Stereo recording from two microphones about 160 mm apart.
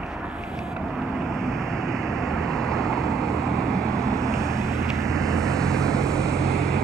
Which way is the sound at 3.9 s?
20° right (ahead or behind).